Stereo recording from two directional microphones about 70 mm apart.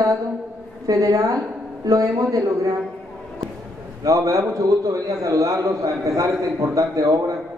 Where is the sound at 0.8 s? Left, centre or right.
Right.